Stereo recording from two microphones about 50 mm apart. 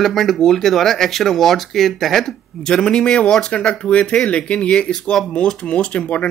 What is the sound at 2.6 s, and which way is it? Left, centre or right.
A man's voice, centre.